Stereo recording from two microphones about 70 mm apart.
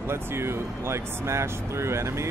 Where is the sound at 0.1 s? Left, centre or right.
Right.